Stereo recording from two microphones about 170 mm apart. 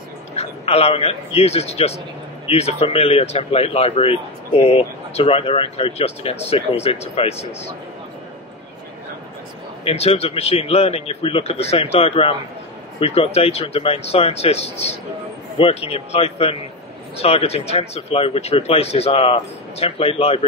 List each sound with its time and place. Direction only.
0.4 s a man's voice: 35° left (ahead or behind)
9.8 s speech: 35° left (ahead or behind)